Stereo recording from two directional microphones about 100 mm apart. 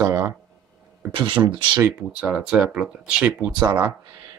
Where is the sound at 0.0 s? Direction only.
30° right (ahead or behind).